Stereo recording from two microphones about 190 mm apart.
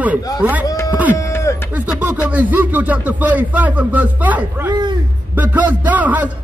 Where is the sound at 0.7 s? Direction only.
20° left (ahead or behind).